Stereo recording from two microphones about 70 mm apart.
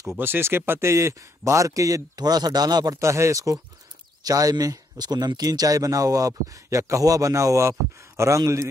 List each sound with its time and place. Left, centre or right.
0.2 s a man's voice: right
2.1 s a man's voice: right
3.0 s a man's voice: right